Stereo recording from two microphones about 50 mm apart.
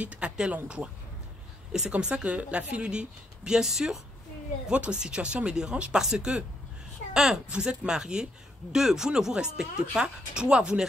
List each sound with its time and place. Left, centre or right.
0.0 s speech: right
1.9 s speech: right
4.6 s speech: right
7.4 s speech: centre